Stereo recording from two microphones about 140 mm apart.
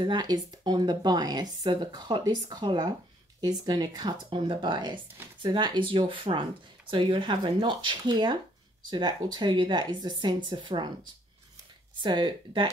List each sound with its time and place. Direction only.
0.0 s speech: 30° right (ahead or behind)
12.0 s speech: 35° right (ahead or behind)